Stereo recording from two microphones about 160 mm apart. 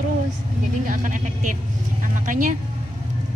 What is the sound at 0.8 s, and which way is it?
Speech, 55° right (ahead or behind).